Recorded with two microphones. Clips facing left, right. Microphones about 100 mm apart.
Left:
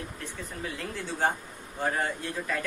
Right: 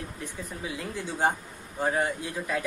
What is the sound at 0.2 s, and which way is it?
Speech, 15° right (ahead or behind).